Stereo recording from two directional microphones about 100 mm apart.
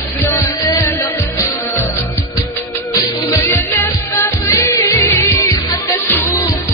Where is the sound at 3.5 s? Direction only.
20° left (ahead or behind).